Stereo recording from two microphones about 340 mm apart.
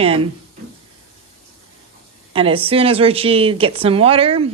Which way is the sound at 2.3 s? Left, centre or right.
Centre.